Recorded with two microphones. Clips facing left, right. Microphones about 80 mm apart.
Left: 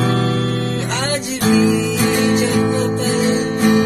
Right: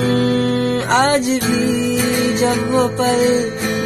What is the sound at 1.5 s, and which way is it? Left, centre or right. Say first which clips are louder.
Music: left 6 dB; right.